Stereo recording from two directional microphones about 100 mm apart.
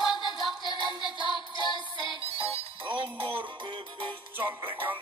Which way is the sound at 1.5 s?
50° left (ahead or behind).